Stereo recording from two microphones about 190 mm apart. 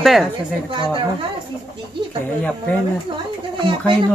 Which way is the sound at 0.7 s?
25° right (ahead or behind).